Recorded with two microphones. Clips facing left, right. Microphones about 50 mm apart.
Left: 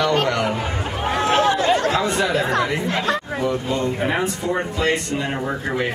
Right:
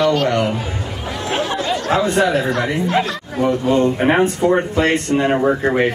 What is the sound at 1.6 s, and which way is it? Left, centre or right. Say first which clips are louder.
Chatter: left 3 dB; left.